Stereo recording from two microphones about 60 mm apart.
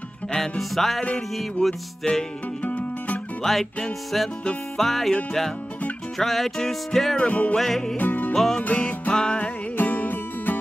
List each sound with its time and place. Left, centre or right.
0.3 s music: centre
2.6 s music: left
3.4 s music: centre
7.2 s music: left
7.5 s music: centre
8.0 s music: left
9.4 s music: left